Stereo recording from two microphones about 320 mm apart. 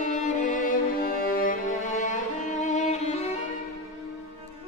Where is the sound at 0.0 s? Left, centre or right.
Left.